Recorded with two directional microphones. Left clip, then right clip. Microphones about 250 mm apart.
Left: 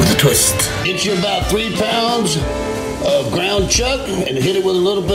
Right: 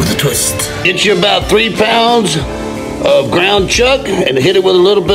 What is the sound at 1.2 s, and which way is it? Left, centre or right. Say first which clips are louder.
A man's voice: right 8 dB; right.